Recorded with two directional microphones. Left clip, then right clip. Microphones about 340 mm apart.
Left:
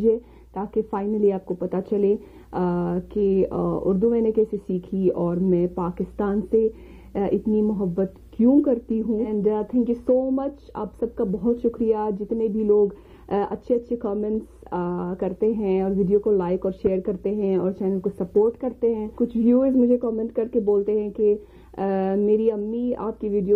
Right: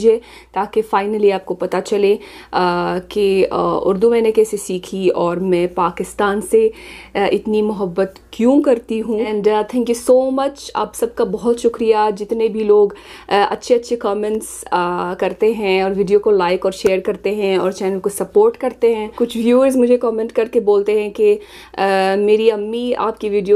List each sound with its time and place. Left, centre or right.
0.0 s speech: centre
7.6 s speech: centre
10.3 s speech: centre
11.5 s speech: centre
20.5 s speech: centre
20.8 s speech: centre